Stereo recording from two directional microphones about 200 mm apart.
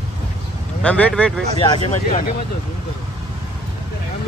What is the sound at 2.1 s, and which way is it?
Speech, 45° left (ahead or behind).